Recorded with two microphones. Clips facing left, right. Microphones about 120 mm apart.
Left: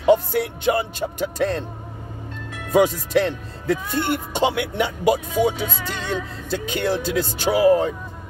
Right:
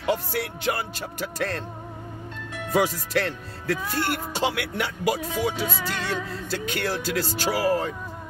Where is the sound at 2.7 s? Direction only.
15° left (ahead or behind).